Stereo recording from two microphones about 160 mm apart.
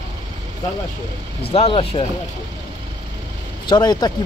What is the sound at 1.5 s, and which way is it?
Speech, 35° left (ahead or behind).